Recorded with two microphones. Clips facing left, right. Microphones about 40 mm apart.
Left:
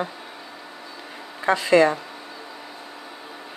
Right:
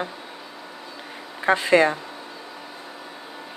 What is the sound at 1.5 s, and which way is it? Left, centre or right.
Speech, right.